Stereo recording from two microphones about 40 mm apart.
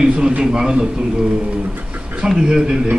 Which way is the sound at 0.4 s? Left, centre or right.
Centre.